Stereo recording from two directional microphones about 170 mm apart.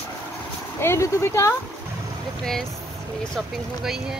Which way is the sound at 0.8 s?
15° left (ahead or behind).